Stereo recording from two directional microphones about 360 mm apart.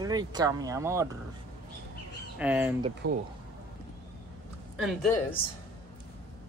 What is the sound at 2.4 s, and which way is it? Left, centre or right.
Speech, centre.